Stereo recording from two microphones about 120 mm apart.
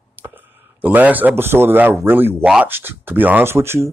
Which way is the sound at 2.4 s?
5° right (ahead or behind).